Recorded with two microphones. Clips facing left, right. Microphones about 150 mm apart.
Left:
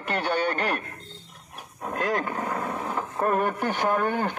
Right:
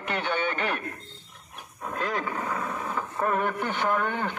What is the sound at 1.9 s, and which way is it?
Speech, 45° left (ahead or behind).